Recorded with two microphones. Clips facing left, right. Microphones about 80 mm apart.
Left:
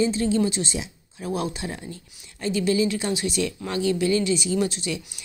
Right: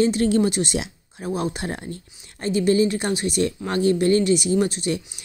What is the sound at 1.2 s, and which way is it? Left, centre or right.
Speech, right.